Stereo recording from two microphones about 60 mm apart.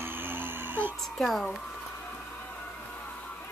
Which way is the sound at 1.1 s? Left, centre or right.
Centre.